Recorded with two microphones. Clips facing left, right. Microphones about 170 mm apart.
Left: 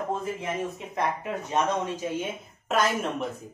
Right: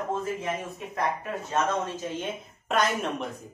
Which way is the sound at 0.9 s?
20° left (ahead or behind).